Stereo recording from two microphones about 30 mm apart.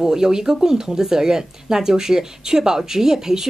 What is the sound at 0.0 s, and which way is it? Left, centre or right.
Speech, centre.